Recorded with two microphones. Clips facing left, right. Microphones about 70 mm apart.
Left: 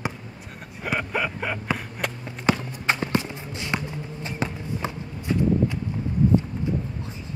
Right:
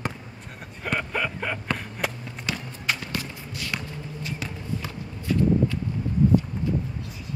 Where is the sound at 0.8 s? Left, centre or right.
Centre.